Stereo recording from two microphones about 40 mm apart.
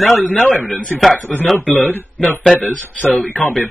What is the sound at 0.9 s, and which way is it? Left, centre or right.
Speech, left.